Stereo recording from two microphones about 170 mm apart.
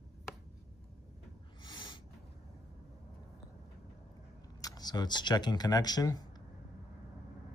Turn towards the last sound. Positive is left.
turn(degrees=25)  # may be behind; listen again after turning